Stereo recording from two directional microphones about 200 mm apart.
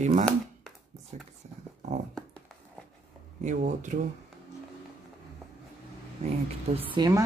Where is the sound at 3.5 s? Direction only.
40° right (ahead or behind).